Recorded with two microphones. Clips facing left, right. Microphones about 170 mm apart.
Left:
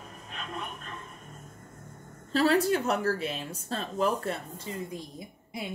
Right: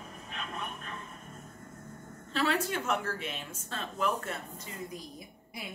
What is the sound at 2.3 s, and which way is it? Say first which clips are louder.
Speech: left 7 dB; 35° left (ahead or behind).